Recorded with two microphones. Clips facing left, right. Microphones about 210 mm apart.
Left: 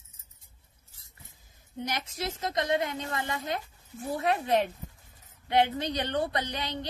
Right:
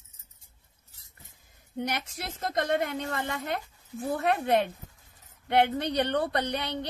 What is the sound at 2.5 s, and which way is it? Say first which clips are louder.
A woman's voice: right 2 dB; 50° right (ahead or behind).